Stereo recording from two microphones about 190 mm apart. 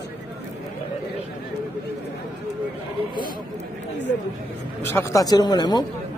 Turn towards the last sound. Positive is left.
turn(degrees=20)  # may be behind; listen again after turning